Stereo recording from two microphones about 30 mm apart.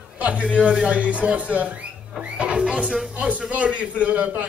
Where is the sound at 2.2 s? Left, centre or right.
Right.